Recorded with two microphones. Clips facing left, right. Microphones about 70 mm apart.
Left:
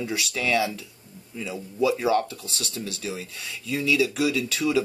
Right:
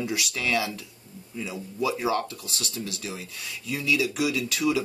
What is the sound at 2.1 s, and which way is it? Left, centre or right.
Speech, left.